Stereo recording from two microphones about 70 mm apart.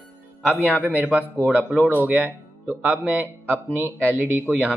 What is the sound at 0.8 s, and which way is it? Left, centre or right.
Speech, right.